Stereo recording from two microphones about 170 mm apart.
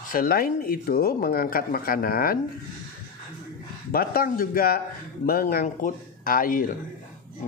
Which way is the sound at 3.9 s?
60° left (ahead or behind).